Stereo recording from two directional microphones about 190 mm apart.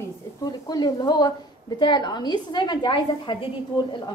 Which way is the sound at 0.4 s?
20° left (ahead or behind).